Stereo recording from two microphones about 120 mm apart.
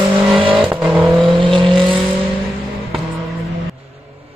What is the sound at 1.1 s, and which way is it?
Vehicle, 45° right (ahead or behind).